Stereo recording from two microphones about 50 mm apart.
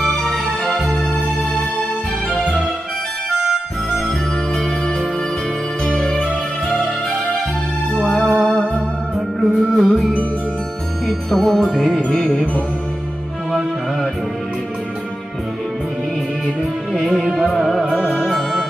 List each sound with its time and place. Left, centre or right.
0.0 s music: centre
5.9 s music: centre
8.3 s music: centre
12.3 s music: left
16.9 s music: centre